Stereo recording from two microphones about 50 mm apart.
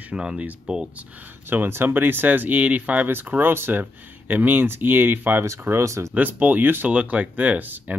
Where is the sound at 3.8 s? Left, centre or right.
Right.